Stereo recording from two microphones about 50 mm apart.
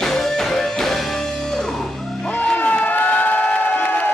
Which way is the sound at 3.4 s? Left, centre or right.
Left.